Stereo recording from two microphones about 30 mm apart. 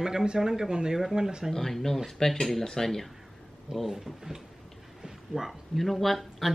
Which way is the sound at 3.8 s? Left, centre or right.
Centre.